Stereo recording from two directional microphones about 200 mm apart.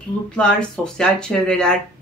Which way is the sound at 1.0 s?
5° left (ahead or behind).